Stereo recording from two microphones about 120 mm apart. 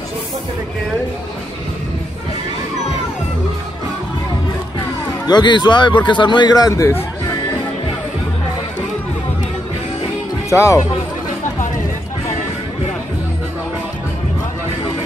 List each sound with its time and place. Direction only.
5.2 s a man's voice: 35° left (ahead or behind)
10.5 s speech: 25° left (ahead or behind)